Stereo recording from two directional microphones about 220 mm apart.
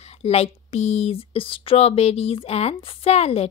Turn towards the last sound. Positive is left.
turn(degrees=30)  # may be behind; listen again after turning